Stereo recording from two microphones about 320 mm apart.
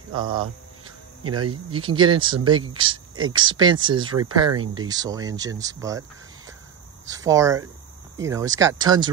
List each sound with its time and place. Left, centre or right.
0.1 s speech: centre
1.2 s speech: right
1.7 s speech: centre